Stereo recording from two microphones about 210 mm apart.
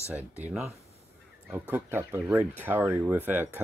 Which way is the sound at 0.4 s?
Centre (ahead or behind).